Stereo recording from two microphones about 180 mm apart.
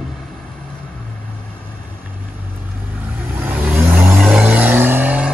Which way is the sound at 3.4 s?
10° right (ahead or behind).